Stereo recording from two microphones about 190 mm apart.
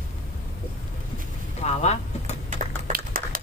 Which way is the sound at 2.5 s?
50° right (ahead or behind).